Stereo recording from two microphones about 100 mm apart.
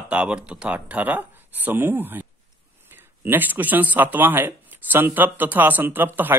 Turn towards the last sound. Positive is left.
turn(degrees=-20)  # may be behind; listen again after turning